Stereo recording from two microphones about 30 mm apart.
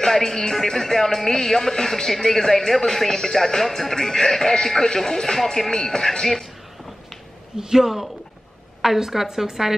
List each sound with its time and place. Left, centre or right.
0.0 s speech: centre
5.4 s speech: centre
5.9 s speech: left
7.5 s a woman's voice: centre